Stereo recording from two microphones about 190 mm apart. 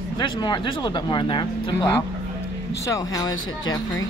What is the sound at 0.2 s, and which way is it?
Speech, 25° left (ahead or behind).